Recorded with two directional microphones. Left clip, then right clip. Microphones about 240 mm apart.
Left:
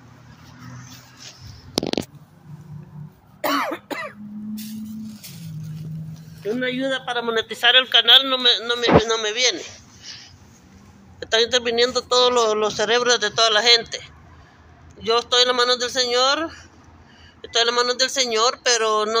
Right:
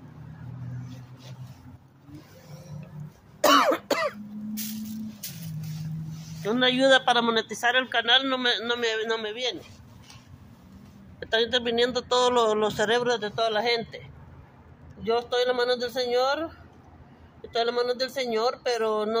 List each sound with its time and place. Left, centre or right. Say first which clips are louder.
3.3 s cough: right 3 dB; right
6.4 s a man's voice: right 2 dB; right
7.2 s speech: left 6 dB; centre
11.1 s speech: left 6 dB; centre